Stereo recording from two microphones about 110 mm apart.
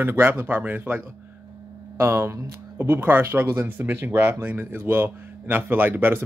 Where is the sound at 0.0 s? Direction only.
20° right (ahead or behind).